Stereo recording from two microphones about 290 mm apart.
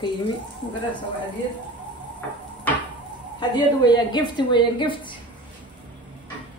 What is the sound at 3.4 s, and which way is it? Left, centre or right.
A woman's voice, centre.